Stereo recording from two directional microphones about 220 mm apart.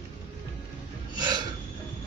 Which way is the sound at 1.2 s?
20° right (ahead or behind).